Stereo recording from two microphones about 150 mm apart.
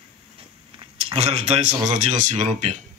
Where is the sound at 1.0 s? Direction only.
40° right (ahead or behind).